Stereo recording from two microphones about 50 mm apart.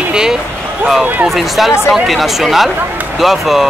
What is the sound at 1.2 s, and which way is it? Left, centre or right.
Speech, centre.